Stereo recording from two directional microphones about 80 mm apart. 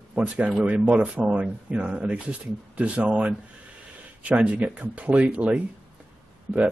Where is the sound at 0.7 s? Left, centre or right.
Centre.